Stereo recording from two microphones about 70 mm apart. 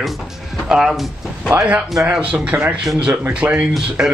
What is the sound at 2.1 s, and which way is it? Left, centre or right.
Speech, right.